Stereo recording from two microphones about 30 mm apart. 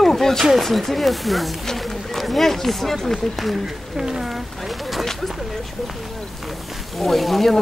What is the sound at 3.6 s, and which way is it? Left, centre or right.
Speech, centre.